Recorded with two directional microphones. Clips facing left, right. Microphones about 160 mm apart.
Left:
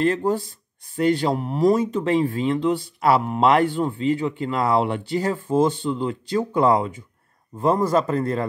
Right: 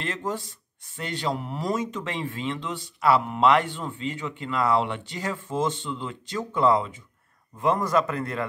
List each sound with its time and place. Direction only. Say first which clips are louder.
0.0 s speech: left 10 dB; 35° left (ahead or behind)
7.5 s speech: left 4 dB; 30° left (ahead or behind)